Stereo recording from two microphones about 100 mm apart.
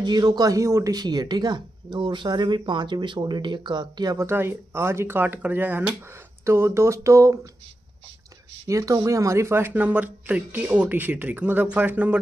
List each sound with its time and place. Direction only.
0.0 s speech: 45° right (ahead or behind)
4.3 s speech: 25° right (ahead or behind)
6.4 s speech: 30° right (ahead or behind)
8.6 s speech: 35° right (ahead or behind); by 12.2 s 15° right (ahead or behind)